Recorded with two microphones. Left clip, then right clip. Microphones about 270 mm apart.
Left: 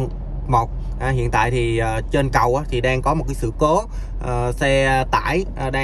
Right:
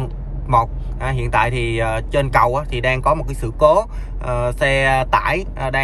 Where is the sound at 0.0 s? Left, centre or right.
Left.